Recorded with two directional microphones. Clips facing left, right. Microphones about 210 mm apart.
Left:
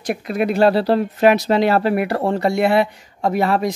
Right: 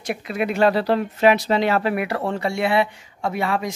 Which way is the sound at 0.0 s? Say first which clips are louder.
Left 4 dB; 45° left (ahead or behind).